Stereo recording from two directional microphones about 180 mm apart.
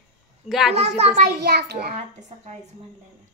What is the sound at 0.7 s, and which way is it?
Speech, 35° right (ahead or behind).